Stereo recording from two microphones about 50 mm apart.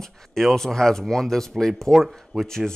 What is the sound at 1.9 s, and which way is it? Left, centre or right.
Speech, centre.